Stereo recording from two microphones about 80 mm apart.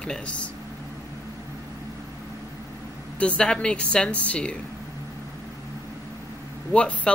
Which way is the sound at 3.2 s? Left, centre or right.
Centre.